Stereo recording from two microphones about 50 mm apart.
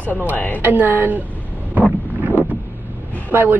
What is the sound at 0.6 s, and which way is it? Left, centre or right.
Speech, right.